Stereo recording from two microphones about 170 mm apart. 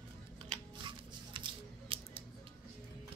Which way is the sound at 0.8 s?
30° right (ahead or behind).